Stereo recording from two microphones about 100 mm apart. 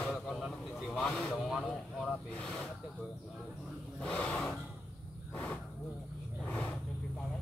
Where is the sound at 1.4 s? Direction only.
5° right (ahead or behind).